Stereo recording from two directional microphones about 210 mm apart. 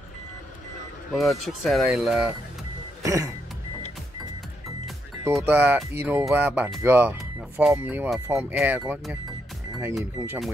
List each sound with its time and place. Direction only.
1.1 s speech: centre (ahead or behind)
3.0 s music: 15° right (ahead or behind)
5.2 s speech: 10° right (ahead or behind)